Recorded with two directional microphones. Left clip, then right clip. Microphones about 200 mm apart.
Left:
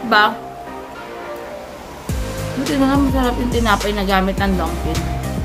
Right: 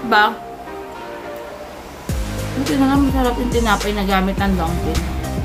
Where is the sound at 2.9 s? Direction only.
15° left (ahead or behind).